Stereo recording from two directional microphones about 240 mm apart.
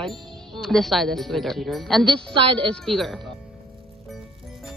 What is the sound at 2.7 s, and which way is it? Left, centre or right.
Speech, centre.